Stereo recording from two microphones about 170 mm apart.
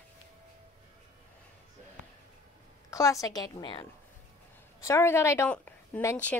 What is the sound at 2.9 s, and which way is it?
A woman's voice, 20° left (ahead or behind).